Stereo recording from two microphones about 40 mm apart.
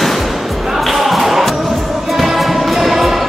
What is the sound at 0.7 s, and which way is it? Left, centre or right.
Music, centre.